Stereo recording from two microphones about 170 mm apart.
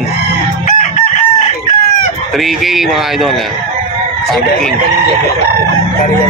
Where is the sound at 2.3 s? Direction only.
Centre (ahead or behind).